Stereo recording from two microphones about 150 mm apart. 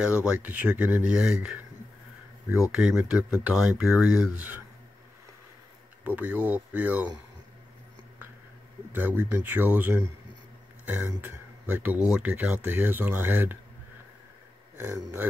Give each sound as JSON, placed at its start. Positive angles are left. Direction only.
{"t": 0.0, "sound": "speech", "side_deg": -5}
{"t": 2.7, "sound": "speech", "side_deg": -5}
{"t": 6.0, "sound": "speech", "side_deg": -10}
{"t": 8.9, "sound": "speech", "side_deg": -15}
{"t": 14.8, "sound": "speech", "side_deg": -15}